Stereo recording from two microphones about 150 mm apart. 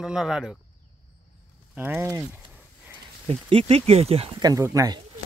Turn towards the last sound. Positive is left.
turn(degrees=-25)  # may be behind; listen again after turning